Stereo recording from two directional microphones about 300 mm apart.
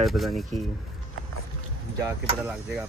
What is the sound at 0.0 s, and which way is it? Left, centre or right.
Speech, centre.